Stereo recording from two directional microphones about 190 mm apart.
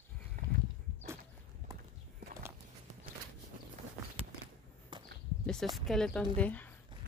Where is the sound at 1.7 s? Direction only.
15° right (ahead or behind).